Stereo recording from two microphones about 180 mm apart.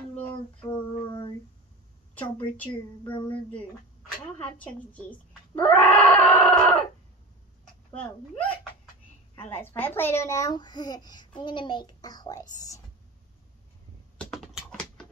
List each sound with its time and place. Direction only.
0.7 s female singing: 25° left (ahead or behind)
2.1 s speech: 10° left (ahead or behind)
4.4 s speech: 10° left (ahead or behind)
5.6 s screaming: 5° left (ahead or behind)
7.9 s speech: 10° left (ahead or behind)
9.5 s a child's voice: 10° left (ahead or behind)
14.1 s typing: centre (ahead or behind)